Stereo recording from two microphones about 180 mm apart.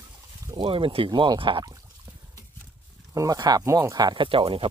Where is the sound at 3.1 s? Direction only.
20° right (ahead or behind).